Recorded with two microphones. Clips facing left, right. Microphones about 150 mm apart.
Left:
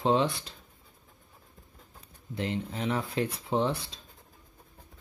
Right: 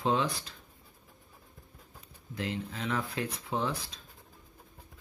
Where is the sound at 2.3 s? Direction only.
30° left (ahead or behind).